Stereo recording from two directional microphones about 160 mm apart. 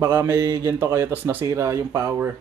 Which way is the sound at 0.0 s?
15° right (ahead or behind).